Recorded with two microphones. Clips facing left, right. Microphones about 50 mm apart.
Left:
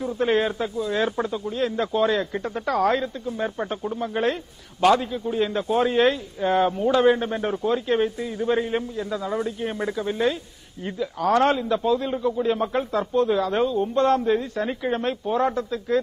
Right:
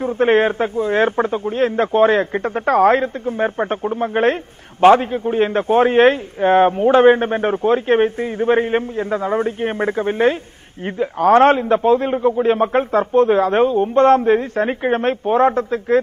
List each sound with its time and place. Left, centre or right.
0.0 s speech: right